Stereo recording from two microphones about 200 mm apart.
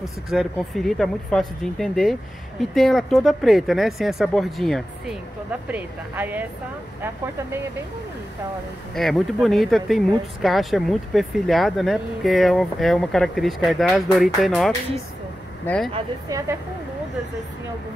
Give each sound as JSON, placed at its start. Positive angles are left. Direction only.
{"t": 0.0, "sound": "speech", "side_deg": 0}
{"t": 8.9, "sound": "speech", "side_deg": 0}
{"t": 16.3, "sound": "speech", "side_deg": -15}